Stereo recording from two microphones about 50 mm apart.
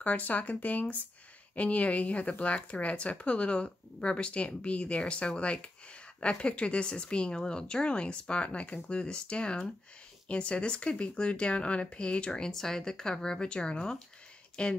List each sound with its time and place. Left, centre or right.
0.0 s speech: left